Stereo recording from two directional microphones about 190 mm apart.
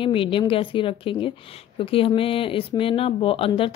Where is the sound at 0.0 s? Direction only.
25° left (ahead or behind).